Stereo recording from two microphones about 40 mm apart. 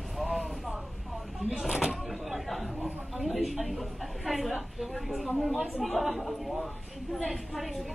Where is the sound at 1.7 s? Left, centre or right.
Centre.